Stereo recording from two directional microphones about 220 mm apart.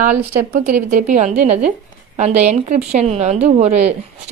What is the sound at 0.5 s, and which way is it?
A woman's voice, 35° right (ahead or behind).